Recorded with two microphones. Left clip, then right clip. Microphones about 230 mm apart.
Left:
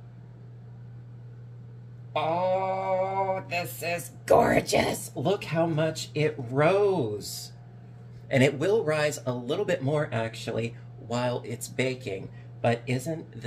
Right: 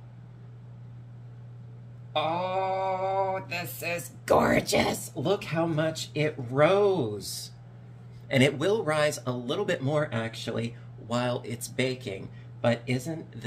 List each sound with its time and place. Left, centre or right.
2.1 s mantra: centre
8.3 s speech: right